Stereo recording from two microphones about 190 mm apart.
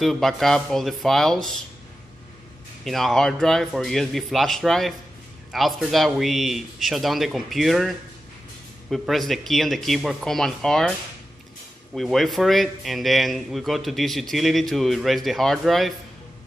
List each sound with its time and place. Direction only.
0.0 s speech: centre (ahead or behind)
2.8 s speech: centre (ahead or behind)
8.9 s speech: centre (ahead or behind)
11.9 s speech: centre (ahead or behind)